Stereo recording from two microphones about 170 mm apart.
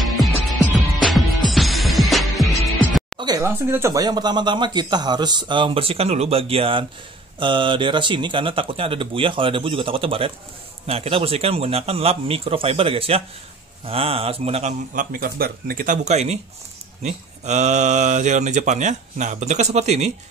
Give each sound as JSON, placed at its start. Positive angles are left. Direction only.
{"t": 0.0, "sound": "music", "side_deg": 0}
{"t": 3.2, "sound": "speech", "side_deg": -20}